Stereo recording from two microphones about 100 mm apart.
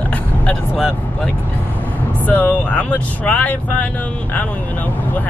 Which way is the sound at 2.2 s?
15° left (ahead or behind).